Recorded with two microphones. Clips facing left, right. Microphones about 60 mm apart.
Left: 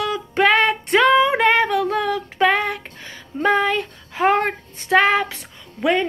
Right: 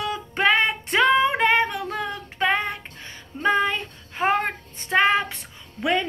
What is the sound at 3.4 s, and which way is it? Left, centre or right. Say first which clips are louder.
Child singing: left 3 dB; left.